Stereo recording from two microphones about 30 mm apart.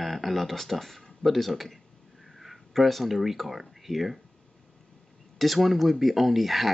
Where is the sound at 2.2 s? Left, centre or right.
Centre.